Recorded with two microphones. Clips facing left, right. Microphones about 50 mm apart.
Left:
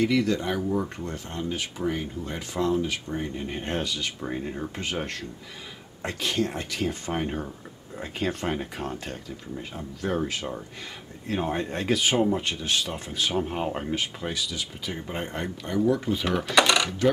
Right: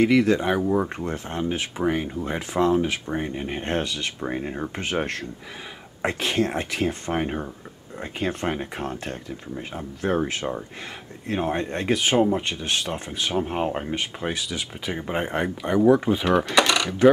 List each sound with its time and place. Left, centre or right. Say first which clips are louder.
0.0 s speech: right 5 dB; right
4.2 s speech: right 3 dB; right
6.0 s speech: right 4 dB; right
8.0 s speech: right 2 dB; centre
11.2 s speech: right 3 dB; centre
14.2 s speech: right 3 dB; right
16.3 s coin: right 1 dB; centre